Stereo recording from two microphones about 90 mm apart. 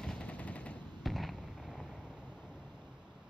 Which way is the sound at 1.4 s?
10° right (ahead or behind).